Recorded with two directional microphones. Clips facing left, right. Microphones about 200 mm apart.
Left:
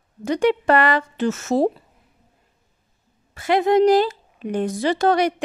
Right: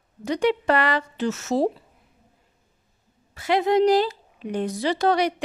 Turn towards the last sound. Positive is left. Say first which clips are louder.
# left 3 dB
turn(degrees=50)  # may be behind; listen again after turning